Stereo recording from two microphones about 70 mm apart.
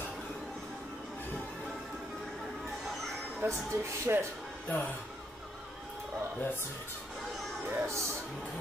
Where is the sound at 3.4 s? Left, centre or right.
Right.